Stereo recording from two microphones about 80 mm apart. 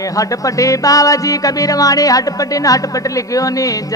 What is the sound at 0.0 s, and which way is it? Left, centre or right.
Music, left.